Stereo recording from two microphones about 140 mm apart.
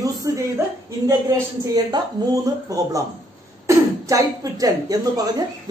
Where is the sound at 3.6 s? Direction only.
25° right (ahead or behind).